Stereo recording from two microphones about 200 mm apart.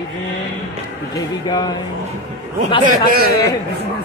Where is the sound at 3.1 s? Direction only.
50° right (ahead or behind).